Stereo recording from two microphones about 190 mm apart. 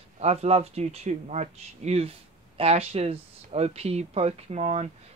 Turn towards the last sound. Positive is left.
turn(degrees=-35)  # may be behind; listen again after turning